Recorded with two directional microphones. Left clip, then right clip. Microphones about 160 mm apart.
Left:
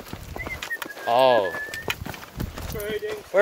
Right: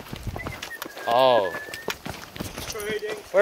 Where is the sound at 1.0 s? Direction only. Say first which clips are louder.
Left 1 dB; 20° left (ahead or behind).